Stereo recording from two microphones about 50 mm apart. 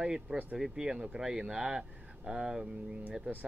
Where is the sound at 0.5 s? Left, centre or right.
Centre.